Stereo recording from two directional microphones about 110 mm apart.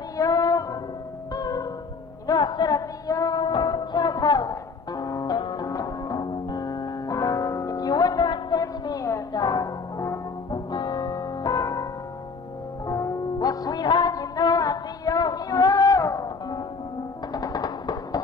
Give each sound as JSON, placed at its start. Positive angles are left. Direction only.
{"t": 0.2, "sound": "music", "side_deg": 35}